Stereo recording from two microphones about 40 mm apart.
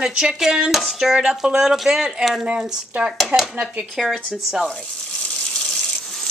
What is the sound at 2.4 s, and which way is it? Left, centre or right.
Speech, right.